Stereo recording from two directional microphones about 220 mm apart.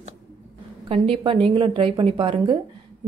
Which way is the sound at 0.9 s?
25° right (ahead or behind).